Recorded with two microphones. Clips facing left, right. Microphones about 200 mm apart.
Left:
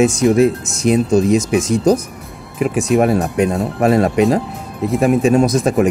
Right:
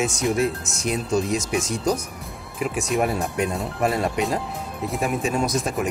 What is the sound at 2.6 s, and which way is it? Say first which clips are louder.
Speech: left 9 dB; 60° left (ahead or behind).